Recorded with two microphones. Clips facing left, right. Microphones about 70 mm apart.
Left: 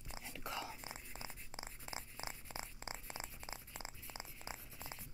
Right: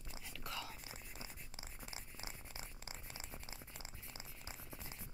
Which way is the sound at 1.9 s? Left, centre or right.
Left.